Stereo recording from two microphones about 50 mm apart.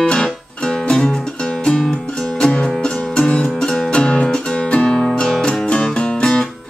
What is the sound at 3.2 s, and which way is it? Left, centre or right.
Music, left.